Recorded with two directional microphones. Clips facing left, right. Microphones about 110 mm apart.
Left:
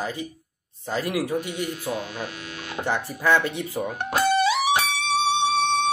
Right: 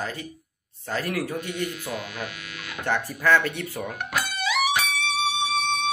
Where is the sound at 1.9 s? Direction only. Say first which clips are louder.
Left 3 dB; 30° left (ahead or behind).